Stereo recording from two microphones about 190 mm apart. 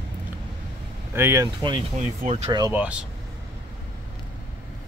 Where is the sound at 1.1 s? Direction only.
15° right (ahead or behind).